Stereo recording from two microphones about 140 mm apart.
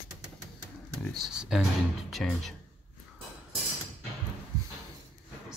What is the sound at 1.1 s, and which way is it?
Speech, centre (ahead or behind).